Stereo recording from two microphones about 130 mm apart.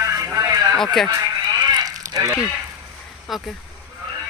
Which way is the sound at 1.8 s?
30° right (ahead or behind).